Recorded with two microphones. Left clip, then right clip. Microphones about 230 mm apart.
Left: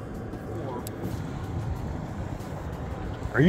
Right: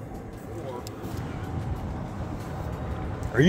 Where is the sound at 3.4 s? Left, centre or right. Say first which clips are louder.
Right 1 dB; right.